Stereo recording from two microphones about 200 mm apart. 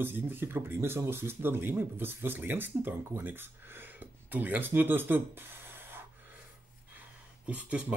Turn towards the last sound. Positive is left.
turn(degrees=-5)  # may be behind; listen again after turning